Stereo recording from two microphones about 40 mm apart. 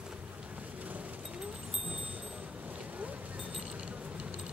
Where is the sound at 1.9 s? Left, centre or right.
Right.